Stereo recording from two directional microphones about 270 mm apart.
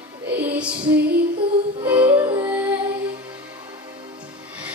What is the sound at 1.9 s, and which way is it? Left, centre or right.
Music, centre.